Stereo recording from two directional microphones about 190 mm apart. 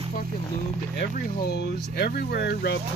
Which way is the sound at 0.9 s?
55° left (ahead or behind).